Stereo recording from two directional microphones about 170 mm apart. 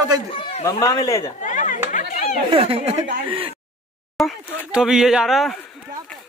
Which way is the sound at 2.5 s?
35° right (ahead or behind).